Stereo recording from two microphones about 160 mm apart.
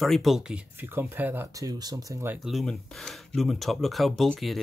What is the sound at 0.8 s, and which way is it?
Speech, 15° right (ahead or behind).